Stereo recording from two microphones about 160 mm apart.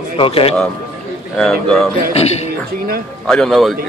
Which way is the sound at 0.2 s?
35° left (ahead or behind).